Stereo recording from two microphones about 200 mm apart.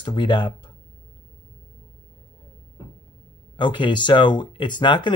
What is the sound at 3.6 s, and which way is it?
Speech, 25° left (ahead or behind).